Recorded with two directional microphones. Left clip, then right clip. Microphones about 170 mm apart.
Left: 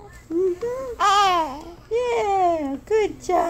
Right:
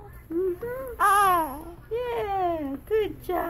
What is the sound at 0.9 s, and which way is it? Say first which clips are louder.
Baby cry: left 2 dB; 5° right (ahead or behind).